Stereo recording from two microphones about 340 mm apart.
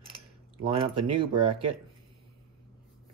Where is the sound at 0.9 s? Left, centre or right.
Right.